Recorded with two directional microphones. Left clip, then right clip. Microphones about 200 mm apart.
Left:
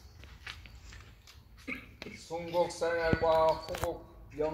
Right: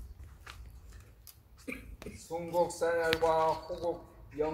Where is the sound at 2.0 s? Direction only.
10° right (ahead or behind).